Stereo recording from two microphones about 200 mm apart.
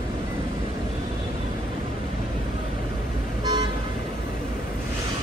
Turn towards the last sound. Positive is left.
turn(degrees=-20)  # may be behind; listen again after turning